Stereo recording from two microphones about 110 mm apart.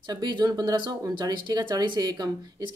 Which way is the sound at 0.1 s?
40° right (ahead or behind).